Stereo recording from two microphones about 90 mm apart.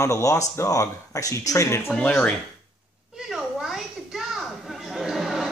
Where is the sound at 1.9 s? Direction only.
10° left (ahead or behind).